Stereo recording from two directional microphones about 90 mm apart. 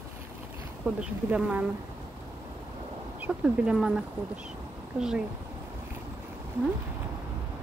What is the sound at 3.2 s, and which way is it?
Speech, 10° right (ahead or behind).